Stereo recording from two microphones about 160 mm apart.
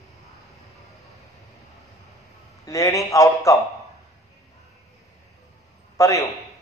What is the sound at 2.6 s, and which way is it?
Speech, 20° left (ahead or behind).